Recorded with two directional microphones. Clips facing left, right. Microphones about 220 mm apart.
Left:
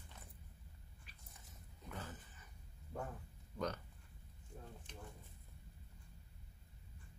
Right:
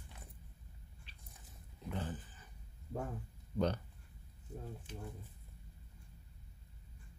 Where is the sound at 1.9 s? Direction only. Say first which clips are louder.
Right 8 dB; 30° right (ahead or behind).